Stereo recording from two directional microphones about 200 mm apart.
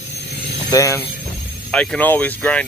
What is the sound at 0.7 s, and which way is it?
Speech, 15° left (ahead or behind).